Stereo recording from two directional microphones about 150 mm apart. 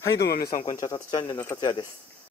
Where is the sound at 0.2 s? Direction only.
90° left.